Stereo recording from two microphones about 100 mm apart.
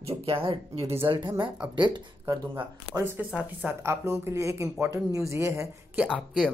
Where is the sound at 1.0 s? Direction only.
55° right (ahead or behind).